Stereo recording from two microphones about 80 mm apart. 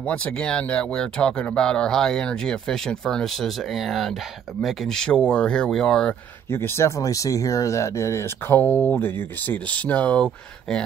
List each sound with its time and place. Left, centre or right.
0.0 s speech: centre
6.5 s speech: left
9.7 s speech: centre